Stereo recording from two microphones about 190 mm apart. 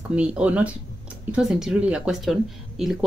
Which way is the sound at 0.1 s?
5° right (ahead or behind).